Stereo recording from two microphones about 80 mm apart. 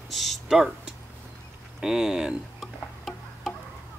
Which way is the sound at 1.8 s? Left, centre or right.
Centre.